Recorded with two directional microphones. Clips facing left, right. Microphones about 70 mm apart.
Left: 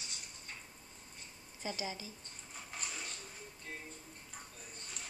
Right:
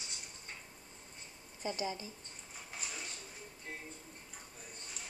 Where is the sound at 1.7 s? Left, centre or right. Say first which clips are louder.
Right 3 dB; right.